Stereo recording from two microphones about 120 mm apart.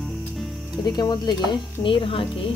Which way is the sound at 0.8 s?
35° left (ahead or behind).